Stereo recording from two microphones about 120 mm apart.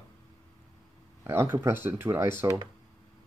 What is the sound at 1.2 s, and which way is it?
Speech, 20° right (ahead or behind).